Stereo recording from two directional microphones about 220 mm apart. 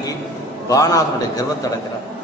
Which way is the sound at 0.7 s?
15° left (ahead or behind).